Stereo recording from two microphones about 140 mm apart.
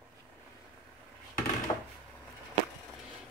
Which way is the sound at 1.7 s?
40° left (ahead or behind).